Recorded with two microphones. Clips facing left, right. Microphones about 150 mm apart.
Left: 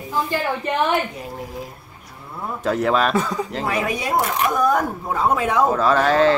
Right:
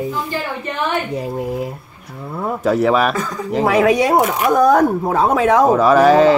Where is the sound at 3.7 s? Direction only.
90° right.